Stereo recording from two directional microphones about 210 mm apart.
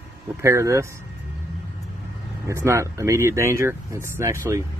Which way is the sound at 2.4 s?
15° right (ahead or behind).